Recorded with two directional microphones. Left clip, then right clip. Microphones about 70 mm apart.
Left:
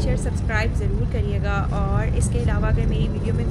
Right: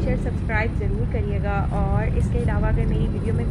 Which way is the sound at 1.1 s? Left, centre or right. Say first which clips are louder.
Even; left.